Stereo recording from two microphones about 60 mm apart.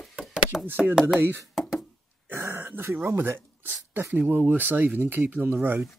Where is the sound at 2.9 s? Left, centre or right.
Right.